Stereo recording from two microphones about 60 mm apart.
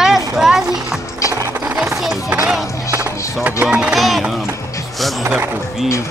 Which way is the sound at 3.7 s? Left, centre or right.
Centre.